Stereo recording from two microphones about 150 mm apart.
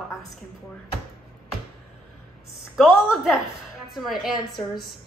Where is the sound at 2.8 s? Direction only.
5° right (ahead or behind).